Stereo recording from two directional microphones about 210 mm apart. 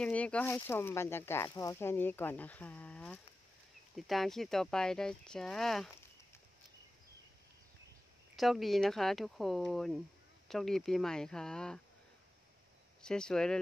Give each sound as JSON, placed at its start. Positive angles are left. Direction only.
{"t": 0.0, "sound": "speech", "side_deg": 5}
{"t": 8.4, "sound": "speech", "side_deg": 0}
{"t": 13.0, "sound": "speech", "side_deg": 5}